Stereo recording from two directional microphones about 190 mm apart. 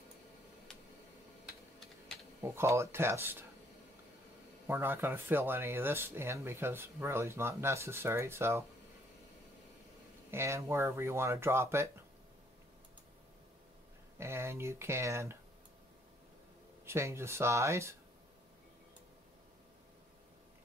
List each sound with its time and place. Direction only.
2.4 s speech: 15° right (ahead or behind)
4.6 s speech: 10° right (ahead or behind)
10.3 s speech: 15° right (ahead or behind)
14.1 s speech: 15° right (ahead or behind)
16.8 s speech: 15° right (ahead or behind)